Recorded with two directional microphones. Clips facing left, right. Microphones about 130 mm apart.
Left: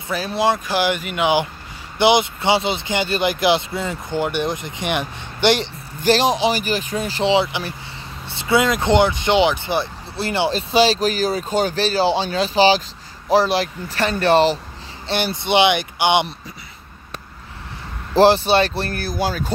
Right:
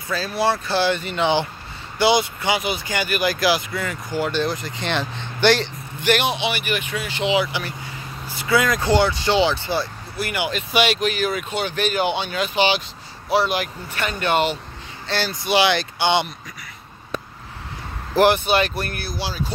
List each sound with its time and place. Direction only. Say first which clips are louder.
0.1 s speech: left 2 dB; 20° left (ahead or behind)
6.0 s speech: left 4 dB; 35° left (ahead or behind)
15.0 s speech: left 2 dB; 25° left (ahead or behind)
18.1 s speech: left 3 dB; 30° left (ahead or behind); by 19.5 s 50° left (ahead or behind)